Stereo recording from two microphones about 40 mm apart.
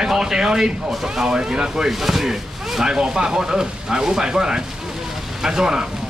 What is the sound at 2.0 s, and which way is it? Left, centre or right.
Speech, centre.